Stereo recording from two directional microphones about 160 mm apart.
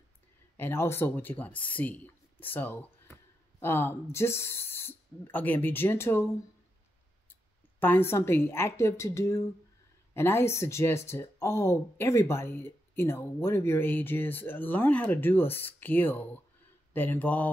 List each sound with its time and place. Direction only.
0.6 s speech: 15° left (ahead or behind)
7.8 s speech: 15° left (ahead or behind)